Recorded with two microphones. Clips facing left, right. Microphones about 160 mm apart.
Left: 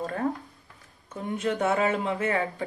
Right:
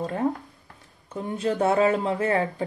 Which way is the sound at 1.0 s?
35° right (ahead or behind).